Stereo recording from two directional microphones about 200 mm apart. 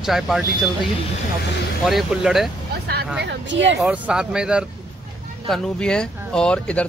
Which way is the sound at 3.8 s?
5° right (ahead or behind).